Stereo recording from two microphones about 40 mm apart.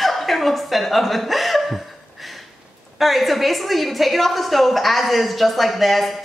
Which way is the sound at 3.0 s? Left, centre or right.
Centre.